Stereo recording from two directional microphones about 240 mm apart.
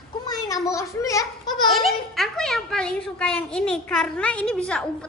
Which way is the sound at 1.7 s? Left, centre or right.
Centre.